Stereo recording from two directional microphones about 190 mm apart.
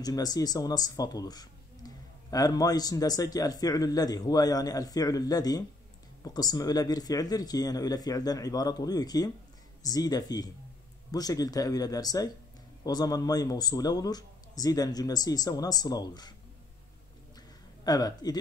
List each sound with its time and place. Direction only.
0.0 s a man's voice: 20° left (ahead or behind)
17.8 s a man's voice: 20° left (ahead or behind)